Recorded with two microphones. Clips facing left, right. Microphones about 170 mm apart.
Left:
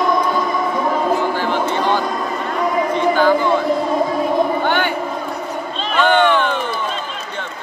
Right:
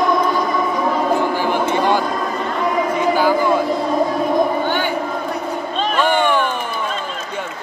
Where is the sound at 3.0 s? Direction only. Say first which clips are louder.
Left 3 dB; 10° right (ahead or behind).